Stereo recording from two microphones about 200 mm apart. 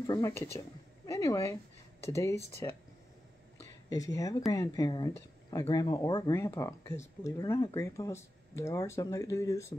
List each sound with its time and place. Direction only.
0.0 s speech: 15° left (ahead or behind)
3.9 s speech: 15° left (ahead or behind)